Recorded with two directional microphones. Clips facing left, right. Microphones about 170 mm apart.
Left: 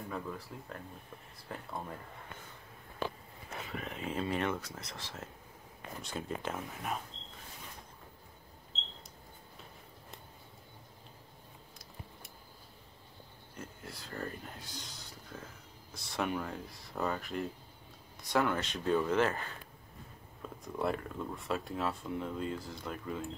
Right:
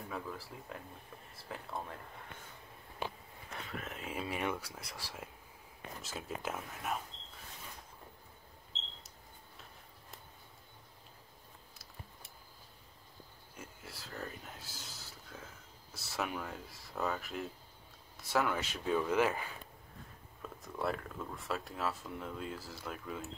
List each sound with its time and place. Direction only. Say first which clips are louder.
0.1 s speech: left 1 dB; 5° right (ahead or behind)
3.5 s speech: left 3 dB; centre (ahead or behind)
13.6 s a sound: left 4 dB; 5° right (ahead or behind)
15.9 s speech: left 4 dB; 5° right (ahead or behind)